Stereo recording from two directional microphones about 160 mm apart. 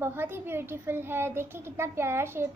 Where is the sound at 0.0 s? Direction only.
15° right (ahead or behind).